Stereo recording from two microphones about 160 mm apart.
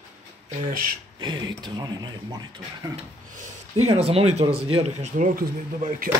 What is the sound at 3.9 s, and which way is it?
Speech, 35° right (ahead or behind).